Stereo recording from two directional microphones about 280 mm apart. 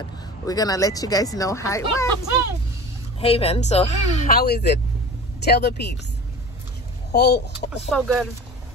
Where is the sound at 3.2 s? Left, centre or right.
Left.